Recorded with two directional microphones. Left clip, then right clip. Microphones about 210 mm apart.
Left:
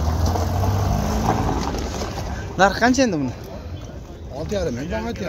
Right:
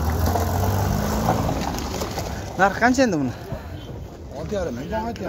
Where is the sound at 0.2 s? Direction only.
30° right (ahead or behind).